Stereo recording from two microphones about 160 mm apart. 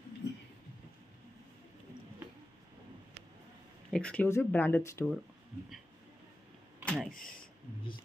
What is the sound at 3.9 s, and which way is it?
Speech, 10° left (ahead or behind).